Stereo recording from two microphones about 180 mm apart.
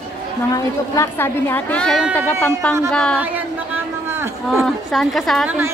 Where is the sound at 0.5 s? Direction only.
15° left (ahead or behind).